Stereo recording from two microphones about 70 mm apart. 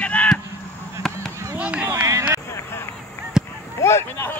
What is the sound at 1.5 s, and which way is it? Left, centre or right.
Run, right.